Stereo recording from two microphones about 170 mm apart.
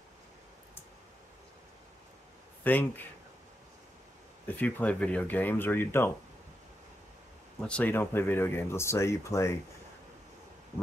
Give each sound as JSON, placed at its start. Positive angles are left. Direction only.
{"t": 2.6, "sound": "speech", "side_deg": 10}
{"t": 4.5, "sound": "speech", "side_deg": 10}
{"t": 7.6, "sound": "speech", "side_deg": 10}